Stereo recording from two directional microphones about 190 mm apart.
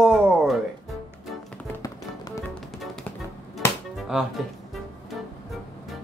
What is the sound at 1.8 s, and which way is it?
Music, 15° left (ahead or behind).